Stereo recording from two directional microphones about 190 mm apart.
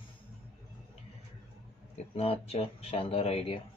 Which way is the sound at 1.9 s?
30° left (ahead or behind).